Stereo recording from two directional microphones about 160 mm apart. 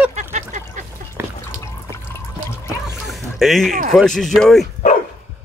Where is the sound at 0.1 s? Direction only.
50° right (ahead or behind).